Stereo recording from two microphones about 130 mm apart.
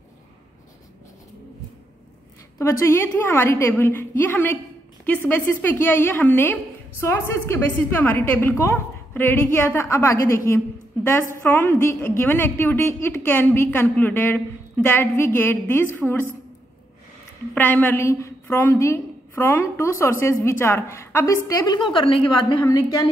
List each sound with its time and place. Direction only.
2.6 s a woman's voice: 20° left (ahead or behind)
17.6 s a woman's voice: 15° left (ahead or behind); by 22.2 s 40° left (ahead or behind)
22.5 s a woman's voice: 30° left (ahead or behind)